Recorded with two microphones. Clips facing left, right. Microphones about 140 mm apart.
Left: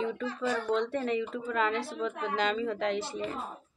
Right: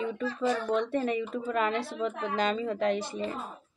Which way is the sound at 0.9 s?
15° right (ahead or behind).